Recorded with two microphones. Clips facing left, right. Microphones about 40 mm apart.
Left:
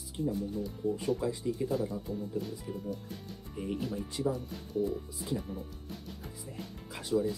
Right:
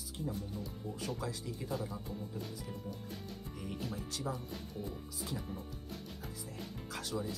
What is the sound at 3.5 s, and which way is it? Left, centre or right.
Speech, centre.